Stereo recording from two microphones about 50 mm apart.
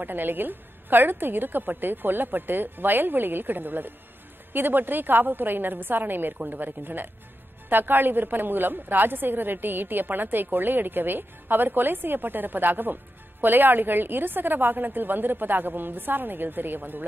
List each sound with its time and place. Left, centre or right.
0.0 s a woman's voice: right